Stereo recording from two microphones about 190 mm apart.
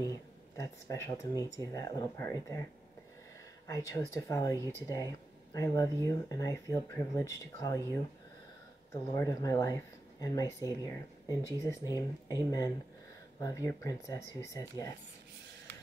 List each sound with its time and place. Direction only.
0.6 s speech: 15° left (ahead or behind)
3.6 s speech: 15° left (ahead or behind)
8.9 s speech: 15° left (ahead or behind)